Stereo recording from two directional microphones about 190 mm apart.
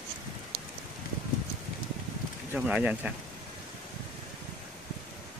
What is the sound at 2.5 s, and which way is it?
Speech, 5° right (ahead or behind).